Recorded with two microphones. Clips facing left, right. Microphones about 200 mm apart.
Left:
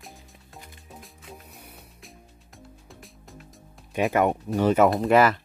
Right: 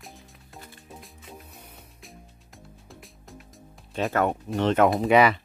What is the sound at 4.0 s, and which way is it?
Speech, 15° left (ahead or behind).